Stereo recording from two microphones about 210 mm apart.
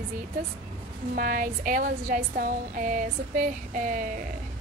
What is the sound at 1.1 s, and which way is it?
A woman's voice, 40° right (ahead or behind).